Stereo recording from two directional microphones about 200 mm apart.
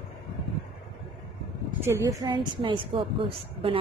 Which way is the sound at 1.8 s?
15° right (ahead or behind).